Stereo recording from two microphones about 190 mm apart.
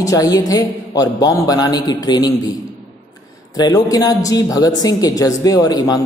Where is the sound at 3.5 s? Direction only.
20° left (ahead or behind).